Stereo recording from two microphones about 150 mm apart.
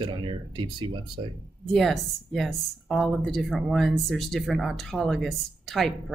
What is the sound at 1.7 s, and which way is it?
A woman's voice, centre (ahead or behind).